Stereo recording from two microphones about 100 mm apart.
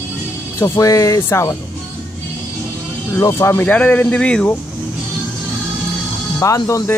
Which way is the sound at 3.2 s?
30° left (ahead or behind).